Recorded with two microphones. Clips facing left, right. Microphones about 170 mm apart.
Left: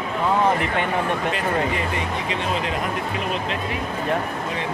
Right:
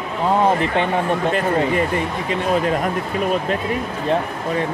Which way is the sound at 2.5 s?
45° right (ahead or behind).